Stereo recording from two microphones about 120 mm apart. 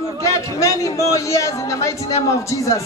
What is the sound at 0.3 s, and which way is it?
A man's voice, 25° left (ahead or behind).